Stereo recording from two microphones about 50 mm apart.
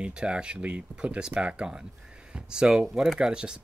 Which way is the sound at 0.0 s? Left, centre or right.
Centre.